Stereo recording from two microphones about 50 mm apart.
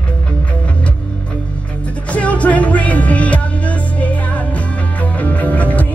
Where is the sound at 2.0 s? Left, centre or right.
Left.